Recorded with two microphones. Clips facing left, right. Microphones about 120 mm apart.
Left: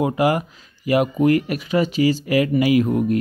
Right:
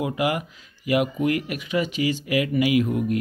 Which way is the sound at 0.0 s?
35° left (ahead or behind).